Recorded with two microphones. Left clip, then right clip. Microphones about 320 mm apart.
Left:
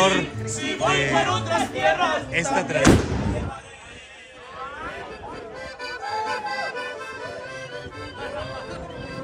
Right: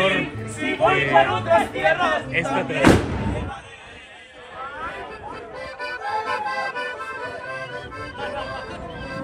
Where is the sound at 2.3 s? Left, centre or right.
Centre.